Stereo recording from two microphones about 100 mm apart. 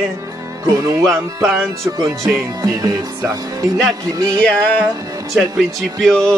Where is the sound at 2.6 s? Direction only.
40° right (ahead or behind).